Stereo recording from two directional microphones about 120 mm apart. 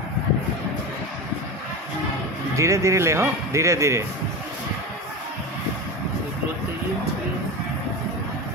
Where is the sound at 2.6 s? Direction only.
25° right (ahead or behind).